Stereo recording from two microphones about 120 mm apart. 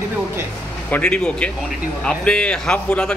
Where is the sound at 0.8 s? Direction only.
10° left (ahead or behind).